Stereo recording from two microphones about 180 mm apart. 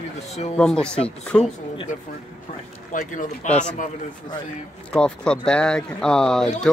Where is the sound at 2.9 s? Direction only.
45° left (ahead or behind).